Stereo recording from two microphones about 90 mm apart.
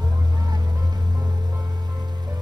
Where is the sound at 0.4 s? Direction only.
45° right (ahead or behind).